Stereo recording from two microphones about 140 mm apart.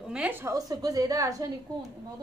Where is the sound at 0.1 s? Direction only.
10° right (ahead or behind).